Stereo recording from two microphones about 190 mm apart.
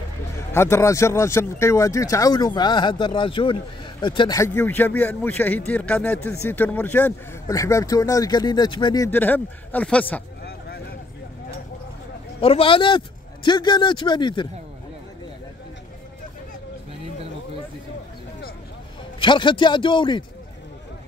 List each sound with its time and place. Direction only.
0.5 s speech: 15° left (ahead or behind)
10.4 s a sound: 55° left (ahead or behind)
12.4 s a man's voice: 30° left (ahead or behind)
19.1 s a man's voice: 25° left (ahead or behind)